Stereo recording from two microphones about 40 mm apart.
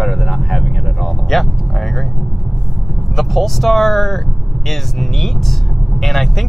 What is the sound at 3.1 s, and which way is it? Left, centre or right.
Speech, centre.